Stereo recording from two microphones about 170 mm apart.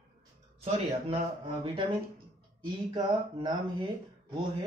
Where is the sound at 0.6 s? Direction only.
35° right (ahead or behind).